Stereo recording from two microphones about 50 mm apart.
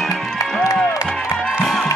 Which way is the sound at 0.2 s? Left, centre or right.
Centre.